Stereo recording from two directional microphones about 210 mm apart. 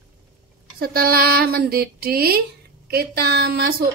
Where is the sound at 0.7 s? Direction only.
45° right (ahead or behind).